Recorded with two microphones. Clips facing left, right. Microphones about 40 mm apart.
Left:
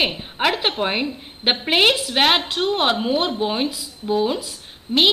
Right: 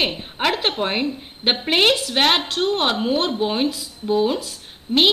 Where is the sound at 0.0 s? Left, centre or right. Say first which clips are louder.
Left 1 dB; centre.